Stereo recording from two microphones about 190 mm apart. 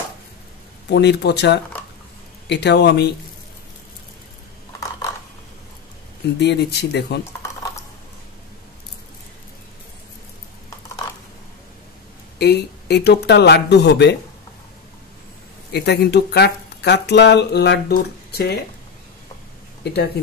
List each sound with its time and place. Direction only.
0.8 s speech: 60° left (ahead or behind)
6.4 s speech: 60° left (ahead or behind)
12.4 s speech: 60° left (ahead or behind)
15.7 s speech: 60° left (ahead or behind)
19.8 s speech: 60° left (ahead or behind)